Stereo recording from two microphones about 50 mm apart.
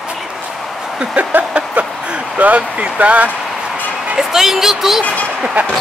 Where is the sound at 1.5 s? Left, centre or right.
Right.